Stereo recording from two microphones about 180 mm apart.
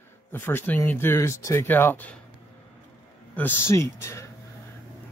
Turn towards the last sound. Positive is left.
turn(degrees=15)  # may be behind; listen again after turning